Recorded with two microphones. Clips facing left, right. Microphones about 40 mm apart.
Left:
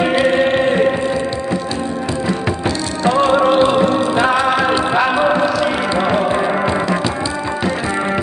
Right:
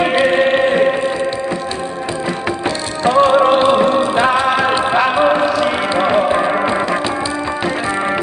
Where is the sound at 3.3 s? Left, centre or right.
Right.